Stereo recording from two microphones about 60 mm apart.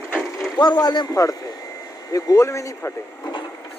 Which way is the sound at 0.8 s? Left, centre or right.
Left.